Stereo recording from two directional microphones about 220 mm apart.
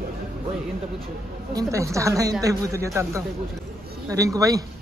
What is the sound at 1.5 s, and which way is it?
A man's voice, 15° right (ahead or behind).